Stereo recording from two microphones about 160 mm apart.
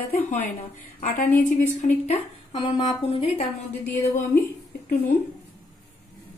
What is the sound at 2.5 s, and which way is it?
Speech, 30° left (ahead or behind).